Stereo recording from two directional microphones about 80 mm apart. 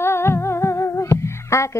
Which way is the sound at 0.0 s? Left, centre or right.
Left.